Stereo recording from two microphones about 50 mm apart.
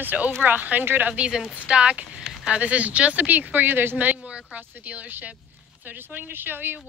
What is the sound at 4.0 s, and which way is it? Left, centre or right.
Speech, right.